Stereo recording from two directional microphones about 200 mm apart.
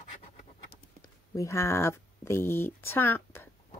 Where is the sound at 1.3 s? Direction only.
15° left (ahead or behind).